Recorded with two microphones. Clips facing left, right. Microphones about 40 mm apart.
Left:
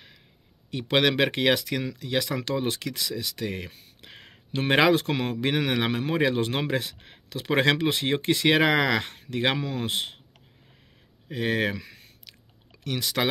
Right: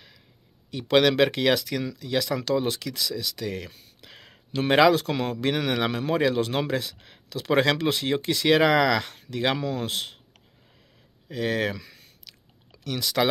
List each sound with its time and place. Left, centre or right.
0.8 s speech: left
11.2 s chewing: left